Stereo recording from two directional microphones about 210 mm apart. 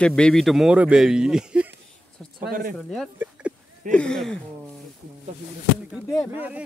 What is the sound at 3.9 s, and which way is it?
Speech, 5° left (ahead or behind).